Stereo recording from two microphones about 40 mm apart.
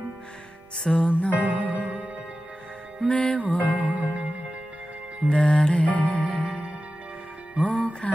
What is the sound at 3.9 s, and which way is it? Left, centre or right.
Music, right.